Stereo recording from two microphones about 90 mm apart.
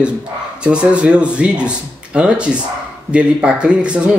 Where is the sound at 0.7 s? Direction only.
10° right (ahead or behind).